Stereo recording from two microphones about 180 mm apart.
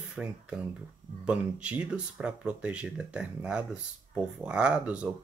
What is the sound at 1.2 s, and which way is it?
Speech, 5° right (ahead or behind).